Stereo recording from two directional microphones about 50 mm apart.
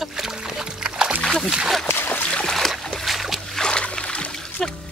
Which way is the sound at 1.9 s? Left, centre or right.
Left.